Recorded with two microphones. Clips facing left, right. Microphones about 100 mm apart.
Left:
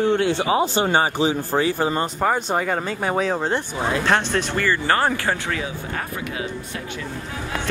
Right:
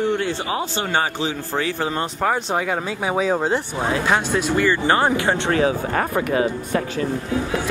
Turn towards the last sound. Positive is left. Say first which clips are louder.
# right 9 dB
turn(degrees=-50)  # may be behind; listen again after turning